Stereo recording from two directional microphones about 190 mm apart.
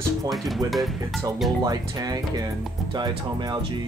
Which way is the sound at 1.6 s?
20° right (ahead or behind).